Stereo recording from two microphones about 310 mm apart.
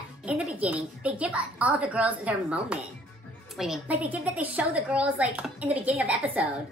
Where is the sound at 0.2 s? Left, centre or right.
Centre.